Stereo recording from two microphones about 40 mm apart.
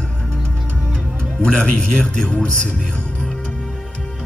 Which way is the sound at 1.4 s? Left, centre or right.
Left.